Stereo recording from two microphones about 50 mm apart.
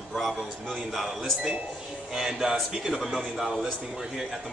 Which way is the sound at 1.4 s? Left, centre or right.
Centre.